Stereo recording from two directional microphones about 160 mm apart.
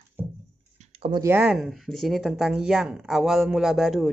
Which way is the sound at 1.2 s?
15° right (ahead or behind).